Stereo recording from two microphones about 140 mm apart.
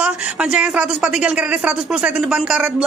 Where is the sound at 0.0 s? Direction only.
10° right (ahead or behind).